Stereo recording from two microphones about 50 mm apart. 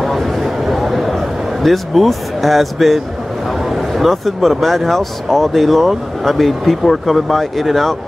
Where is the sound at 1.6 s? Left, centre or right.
Centre.